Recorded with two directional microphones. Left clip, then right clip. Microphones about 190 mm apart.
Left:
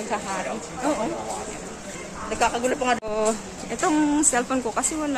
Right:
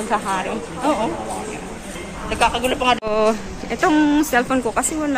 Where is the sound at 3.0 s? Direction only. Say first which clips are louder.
Right 6 dB; 5° left (ahead or behind).